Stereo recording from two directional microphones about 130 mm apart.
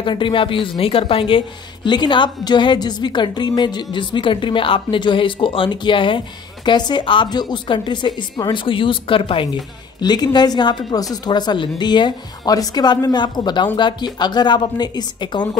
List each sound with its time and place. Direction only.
0.0 s a woman's voice: 40° left (ahead or behind)